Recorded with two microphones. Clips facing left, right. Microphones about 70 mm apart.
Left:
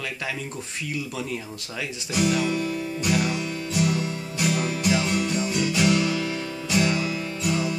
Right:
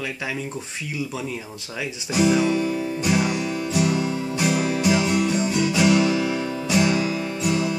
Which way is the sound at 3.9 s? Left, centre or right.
Right.